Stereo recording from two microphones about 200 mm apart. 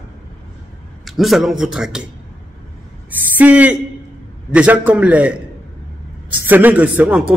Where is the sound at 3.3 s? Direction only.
10° right (ahead or behind).